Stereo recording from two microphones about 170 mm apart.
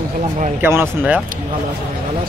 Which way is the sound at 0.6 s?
10° right (ahead or behind).